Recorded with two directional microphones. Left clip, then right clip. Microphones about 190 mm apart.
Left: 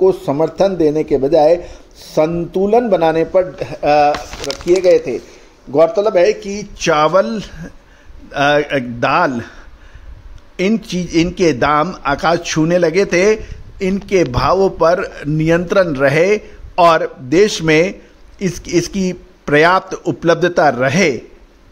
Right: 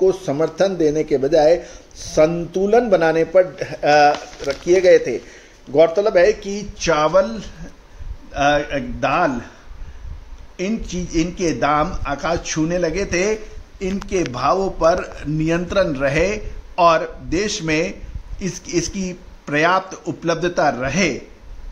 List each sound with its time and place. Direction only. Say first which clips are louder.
0.0 s a man's voice: left 4 dB; 25° left (ahead or behind); by 9.5 s 50° left (ahead or behind)
10.5 s a man's voice: left 8 dB; 45° left (ahead or behind)